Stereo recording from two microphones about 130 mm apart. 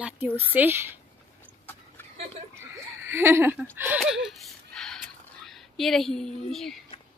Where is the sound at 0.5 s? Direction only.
15° right (ahead or behind).